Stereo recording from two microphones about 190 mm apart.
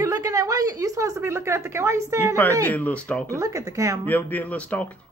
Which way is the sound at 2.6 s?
10° left (ahead or behind).